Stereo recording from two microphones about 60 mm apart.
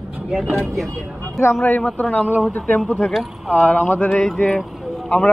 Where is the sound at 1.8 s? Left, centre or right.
Left.